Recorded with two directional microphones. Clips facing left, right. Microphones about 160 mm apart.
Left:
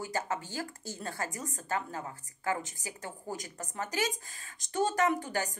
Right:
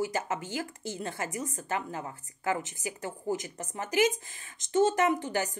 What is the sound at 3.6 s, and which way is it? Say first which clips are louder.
A woman's voice: right 6 dB; 20° right (ahead or behind).